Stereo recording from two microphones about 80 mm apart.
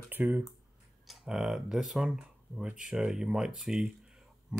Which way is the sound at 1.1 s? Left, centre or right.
Centre.